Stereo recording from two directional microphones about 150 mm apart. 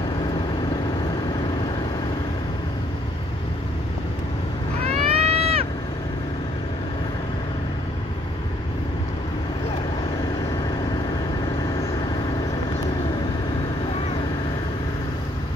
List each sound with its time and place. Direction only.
4.8 s vehicle: 45° right (ahead or behind)